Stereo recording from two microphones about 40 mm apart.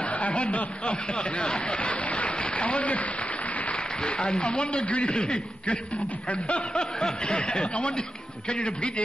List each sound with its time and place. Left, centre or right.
0.0 s a man's voice: left
6.2 s snicker: left